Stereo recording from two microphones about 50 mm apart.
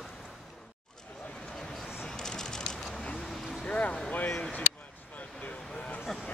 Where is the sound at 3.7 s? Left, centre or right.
Left.